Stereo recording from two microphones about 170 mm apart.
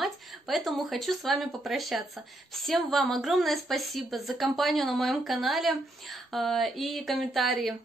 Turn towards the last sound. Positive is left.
turn(degrees=0)  # may be behind; listen again after turning